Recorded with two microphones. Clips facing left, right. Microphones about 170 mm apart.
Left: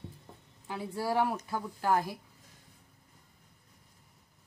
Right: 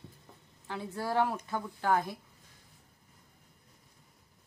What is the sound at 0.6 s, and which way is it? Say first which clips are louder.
A woman's voice: left 2 dB; 10° left (ahead or behind).